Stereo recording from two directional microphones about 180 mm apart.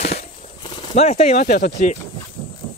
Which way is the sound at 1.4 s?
50° left (ahead or behind).